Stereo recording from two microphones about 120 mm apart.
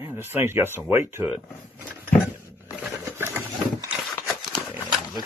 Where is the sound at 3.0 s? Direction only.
20° right (ahead or behind).